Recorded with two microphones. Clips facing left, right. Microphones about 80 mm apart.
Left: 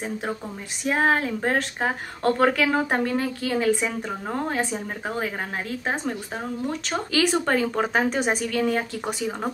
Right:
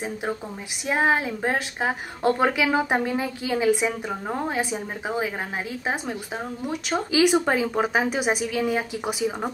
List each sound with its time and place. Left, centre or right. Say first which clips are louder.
0.0 s a woman's voice: even; centre